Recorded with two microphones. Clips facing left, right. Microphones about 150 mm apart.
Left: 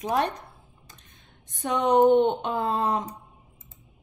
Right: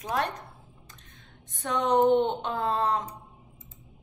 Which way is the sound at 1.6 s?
20° left (ahead or behind).